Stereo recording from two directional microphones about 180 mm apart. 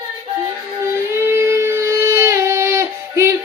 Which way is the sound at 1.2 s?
15° right (ahead or behind).